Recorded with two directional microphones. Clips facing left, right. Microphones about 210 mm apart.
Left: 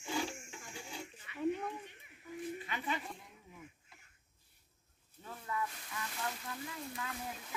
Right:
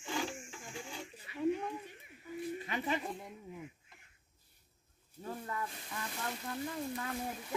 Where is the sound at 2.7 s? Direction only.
40° right (ahead or behind).